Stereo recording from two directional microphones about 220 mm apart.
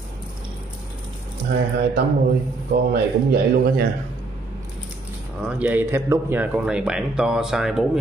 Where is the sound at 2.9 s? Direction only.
45° right (ahead or behind).